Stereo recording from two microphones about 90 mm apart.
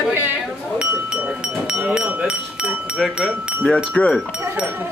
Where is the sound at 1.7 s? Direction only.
10° right (ahead or behind).